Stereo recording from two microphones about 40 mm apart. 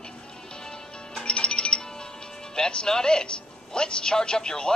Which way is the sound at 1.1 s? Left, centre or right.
Left.